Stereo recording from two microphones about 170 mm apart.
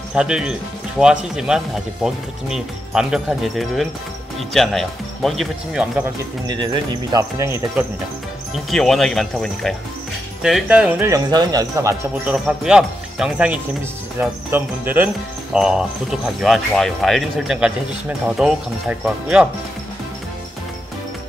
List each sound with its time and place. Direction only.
0.1 s speech: 5° right (ahead or behind)
6.4 s speech: 25° right (ahead or behind)
8.6 s speech: centre (ahead or behind); by 12.4 s 15° right (ahead or behind)
12.4 s speech: 5° right (ahead or behind)